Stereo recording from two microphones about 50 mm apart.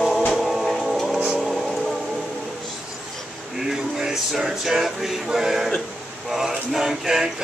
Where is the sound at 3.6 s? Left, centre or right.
Centre.